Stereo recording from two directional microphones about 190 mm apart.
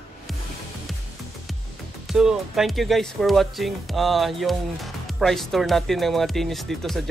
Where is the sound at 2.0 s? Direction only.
Centre (ahead or behind).